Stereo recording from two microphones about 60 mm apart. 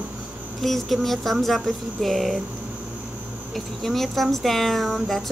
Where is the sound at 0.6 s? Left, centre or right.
Centre.